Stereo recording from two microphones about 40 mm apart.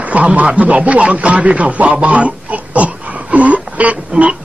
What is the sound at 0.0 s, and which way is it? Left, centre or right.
A man's voice, right.